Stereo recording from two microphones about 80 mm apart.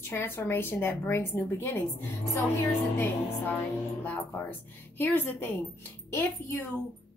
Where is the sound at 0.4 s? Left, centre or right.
Left.